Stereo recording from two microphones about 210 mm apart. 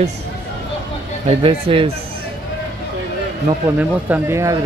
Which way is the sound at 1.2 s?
25° right (ahead or behind).